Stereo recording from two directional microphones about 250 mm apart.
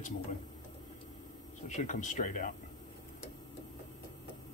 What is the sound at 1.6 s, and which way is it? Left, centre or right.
Speech, left.